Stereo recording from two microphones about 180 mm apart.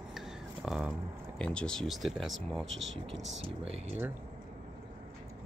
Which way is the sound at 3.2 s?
35° right (ahead or behind).